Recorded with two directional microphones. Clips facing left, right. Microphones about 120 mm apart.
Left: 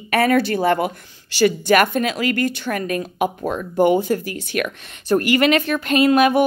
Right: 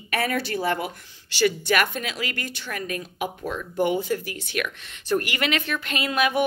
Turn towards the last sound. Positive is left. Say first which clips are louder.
# left 9 dB
turn(degrees=45)  # may be behind; listen again after turning